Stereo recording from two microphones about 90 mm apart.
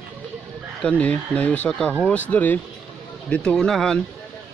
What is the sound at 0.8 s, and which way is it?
Speech, 15° left (ahead or behind).